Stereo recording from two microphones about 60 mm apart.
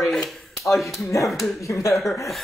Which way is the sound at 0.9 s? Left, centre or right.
Left.